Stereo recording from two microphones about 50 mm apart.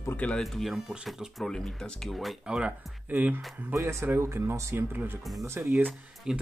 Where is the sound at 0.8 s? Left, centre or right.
Centre.